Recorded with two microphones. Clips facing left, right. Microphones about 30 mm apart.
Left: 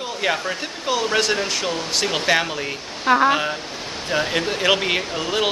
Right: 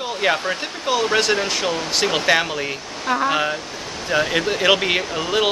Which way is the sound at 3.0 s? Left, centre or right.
Centre.